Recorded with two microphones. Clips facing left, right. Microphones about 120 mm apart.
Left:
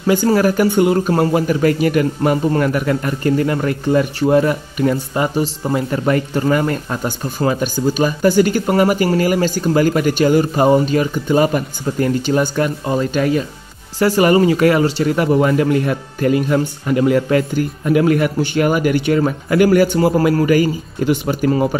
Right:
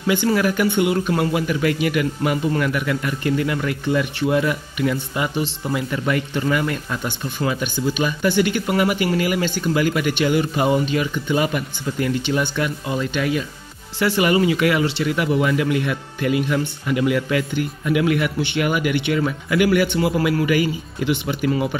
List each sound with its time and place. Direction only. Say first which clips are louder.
0.0 s speech: left 5 dB; 40° left (ahead or behind)